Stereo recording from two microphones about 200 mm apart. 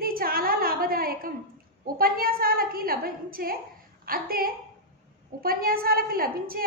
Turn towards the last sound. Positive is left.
turn(degrees=-45)  # may be behind; listen again after turning